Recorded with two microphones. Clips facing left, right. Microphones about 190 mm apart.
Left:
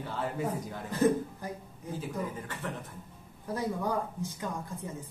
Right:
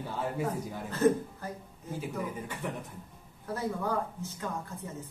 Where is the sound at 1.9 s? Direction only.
15° right (ahead or behind).